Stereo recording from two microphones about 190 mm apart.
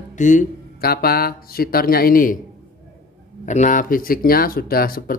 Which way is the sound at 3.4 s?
40° left (ahead or behind).